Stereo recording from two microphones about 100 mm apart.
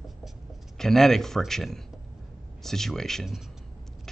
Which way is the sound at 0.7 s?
5° left (ahead or behind).